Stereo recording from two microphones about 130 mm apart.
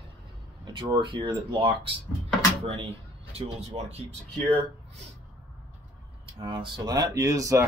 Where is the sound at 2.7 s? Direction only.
45° right (ahead or behind).